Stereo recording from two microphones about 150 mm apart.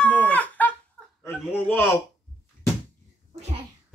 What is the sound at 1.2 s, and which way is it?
Chuckle, 10° left (ahead or behind).